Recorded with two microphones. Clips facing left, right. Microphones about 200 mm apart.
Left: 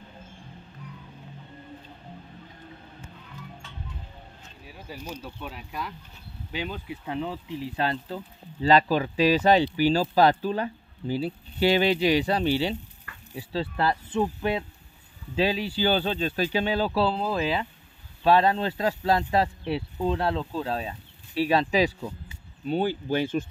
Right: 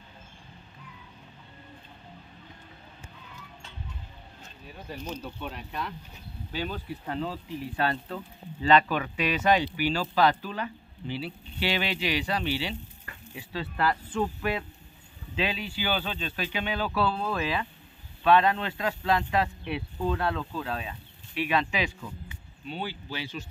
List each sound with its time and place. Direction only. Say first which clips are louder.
4.6 s speech: right 1 dB; 5° left (ahead or behind)
6.5 s speech: even; 15° left (ahead or behind)
15.3 s speech: left 6 dB; 35° left (ahead or behind); by 23.4 s 50° left (ahead or behind)